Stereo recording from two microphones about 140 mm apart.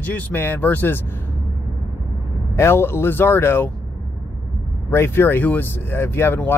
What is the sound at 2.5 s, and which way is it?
Speech, 15° left (ahead or behind).